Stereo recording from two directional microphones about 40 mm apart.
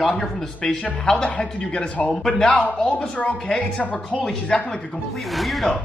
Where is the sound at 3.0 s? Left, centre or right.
Left.